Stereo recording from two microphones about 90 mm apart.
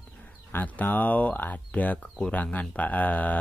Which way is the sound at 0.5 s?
20° left (ahead or behind).